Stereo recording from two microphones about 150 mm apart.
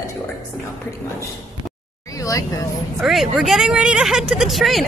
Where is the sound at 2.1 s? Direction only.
20° left (ahead or behind).